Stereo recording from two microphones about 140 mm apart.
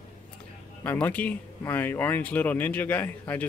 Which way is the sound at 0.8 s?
10° left (ahead or behind).